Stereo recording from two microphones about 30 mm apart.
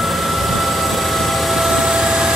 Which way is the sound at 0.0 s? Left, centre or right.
Centre.